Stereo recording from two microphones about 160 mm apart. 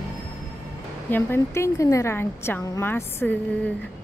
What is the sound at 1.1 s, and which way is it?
Speech, 15° left (ahead or behind).